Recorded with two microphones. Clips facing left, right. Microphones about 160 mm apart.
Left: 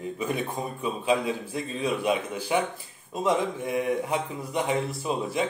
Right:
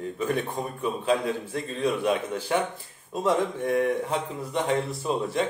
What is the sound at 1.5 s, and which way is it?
A man's voice, 10° left (ahead or behind).